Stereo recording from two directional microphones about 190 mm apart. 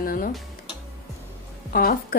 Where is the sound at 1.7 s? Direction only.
50° left (ahead or behind).